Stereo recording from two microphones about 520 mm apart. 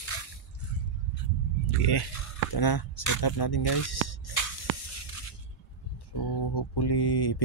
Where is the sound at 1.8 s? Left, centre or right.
Left.